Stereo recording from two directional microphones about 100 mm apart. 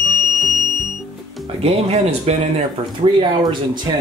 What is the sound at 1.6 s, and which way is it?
Speech, 90° right.